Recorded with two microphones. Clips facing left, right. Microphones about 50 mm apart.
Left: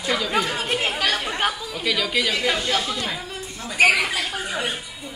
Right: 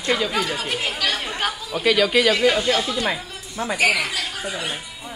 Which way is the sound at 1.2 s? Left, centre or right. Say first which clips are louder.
Left 2 dB; centre.